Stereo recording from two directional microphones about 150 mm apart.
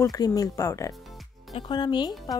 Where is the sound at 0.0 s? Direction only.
25° left (ahead or behind).